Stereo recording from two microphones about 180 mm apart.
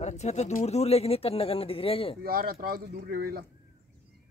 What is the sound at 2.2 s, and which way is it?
Speech, 55° right (ahead or behind).